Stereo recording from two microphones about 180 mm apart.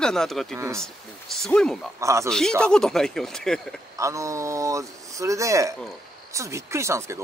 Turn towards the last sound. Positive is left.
turn(degrees=-15)  # may be behind; listen again after turning